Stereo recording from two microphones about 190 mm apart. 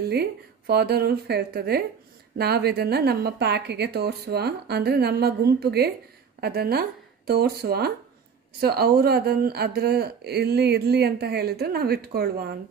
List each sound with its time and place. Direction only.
0.1 s a woman's voice: 55° right (ahead or behind)